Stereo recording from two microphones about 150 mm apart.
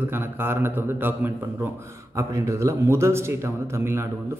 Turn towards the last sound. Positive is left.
turn(degrees=-15)  # may be behind; listen again after turning